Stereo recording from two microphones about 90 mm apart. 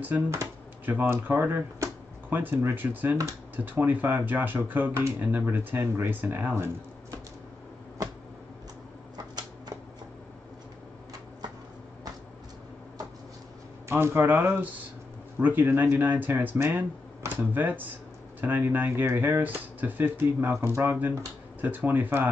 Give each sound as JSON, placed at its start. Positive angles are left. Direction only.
{"t": 0.0, "sound": "speech", "side_deg": -20}
{"t": 9.1, "sound": "typewriter", "side_deg": -50}
{"t": 13.8, "sound": "speech", "side_deg": -25}